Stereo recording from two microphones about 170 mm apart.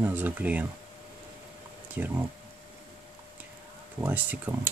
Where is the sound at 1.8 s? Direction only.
10° right (ahead or behind).